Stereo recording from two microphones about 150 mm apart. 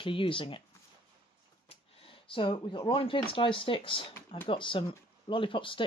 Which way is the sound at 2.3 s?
35° left (ahead or behind).